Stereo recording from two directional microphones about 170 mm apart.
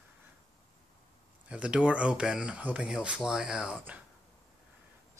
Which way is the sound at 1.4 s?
5° right (ahead or behind).